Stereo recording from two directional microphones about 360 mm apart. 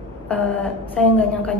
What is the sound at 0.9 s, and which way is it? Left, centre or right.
Speech, centre.